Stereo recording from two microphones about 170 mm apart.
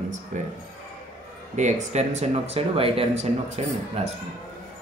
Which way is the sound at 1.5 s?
45° right (ahead or behind).